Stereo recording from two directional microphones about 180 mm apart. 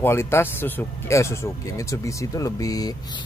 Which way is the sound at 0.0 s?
15° left (ahead or behind).